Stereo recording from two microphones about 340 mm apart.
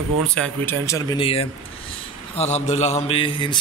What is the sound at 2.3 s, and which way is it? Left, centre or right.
Mantra, centre.